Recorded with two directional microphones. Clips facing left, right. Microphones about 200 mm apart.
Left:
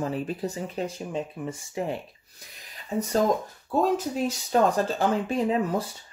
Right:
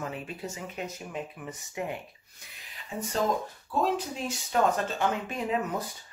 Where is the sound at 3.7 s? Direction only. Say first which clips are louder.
Left 5 dB; 40° left (ahead or behind).